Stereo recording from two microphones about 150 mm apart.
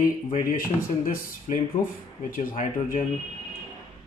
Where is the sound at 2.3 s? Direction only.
60° left (ahead or behind).